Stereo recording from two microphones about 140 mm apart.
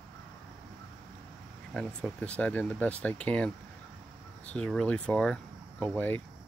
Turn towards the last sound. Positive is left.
turn(degrees=10)  # may be behind; listen again after turning